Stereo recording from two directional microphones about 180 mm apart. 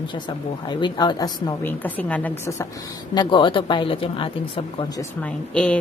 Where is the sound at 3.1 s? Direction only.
25° left (ahead or behind).